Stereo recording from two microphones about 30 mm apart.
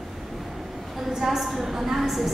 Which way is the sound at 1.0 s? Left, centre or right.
Centre.